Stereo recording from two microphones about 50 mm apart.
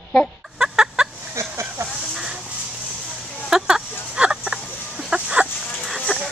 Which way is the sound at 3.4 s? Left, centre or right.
Centre.